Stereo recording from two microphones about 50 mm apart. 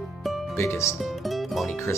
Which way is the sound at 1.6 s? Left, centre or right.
Left.